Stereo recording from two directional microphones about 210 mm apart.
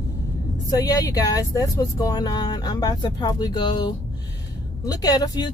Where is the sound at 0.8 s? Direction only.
15° left (ahead or behind).